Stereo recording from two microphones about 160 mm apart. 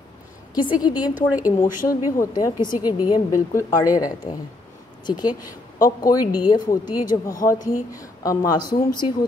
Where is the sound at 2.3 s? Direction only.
25° left (ahead or behind).